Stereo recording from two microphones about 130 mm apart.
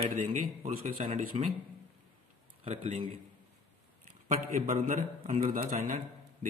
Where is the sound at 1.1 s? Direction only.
80° right.